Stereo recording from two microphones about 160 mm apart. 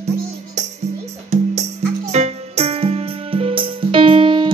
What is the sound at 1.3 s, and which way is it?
Music, 45° right (ahead or behind).